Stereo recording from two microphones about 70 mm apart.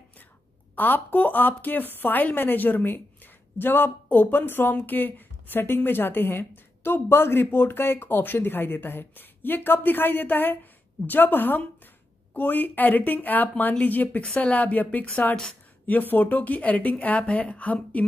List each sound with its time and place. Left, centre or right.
0.7 s speech: left